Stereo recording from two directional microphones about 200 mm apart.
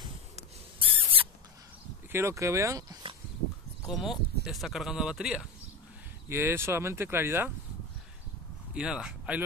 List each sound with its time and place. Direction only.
0.4 s rodents: 25° right (ahead or behind)
2.1 s speech: 15° right (ahead or behind)
3.9 s speech: centre (ahead or behind)
8.7 s speech: 5° right (ahead or behind)